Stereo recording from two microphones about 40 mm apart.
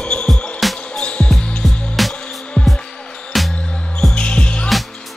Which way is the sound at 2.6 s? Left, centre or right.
Left.